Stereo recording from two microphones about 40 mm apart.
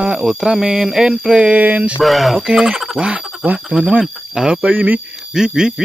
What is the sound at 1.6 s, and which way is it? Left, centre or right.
Speech, right.